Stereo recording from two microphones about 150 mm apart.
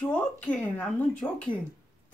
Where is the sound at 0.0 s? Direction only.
10° left (ahead or behind).